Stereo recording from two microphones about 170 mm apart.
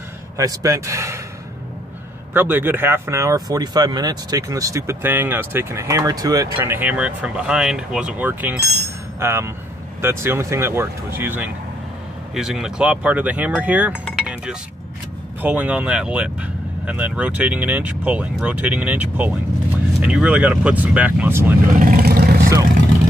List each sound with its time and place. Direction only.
0.4 s speech: 20° right (ahead or behind)
2.3 s speech: 10° right (ahead or behind)
14.2 s chink: 5° right (ahead or behind)
15.4 s speech: 10° right (ahead or behind)
21.7 s vehicle: 55° right (ahead or behind)